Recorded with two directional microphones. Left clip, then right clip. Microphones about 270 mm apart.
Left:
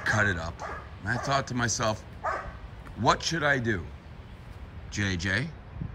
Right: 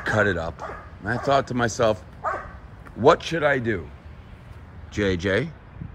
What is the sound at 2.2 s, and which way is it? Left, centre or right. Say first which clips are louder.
Bow-wow: right 4 dB; left.